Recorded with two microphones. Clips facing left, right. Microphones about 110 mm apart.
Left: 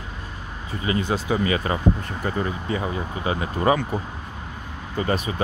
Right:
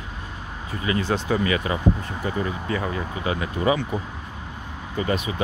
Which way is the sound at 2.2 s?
45° left (ahead or behind).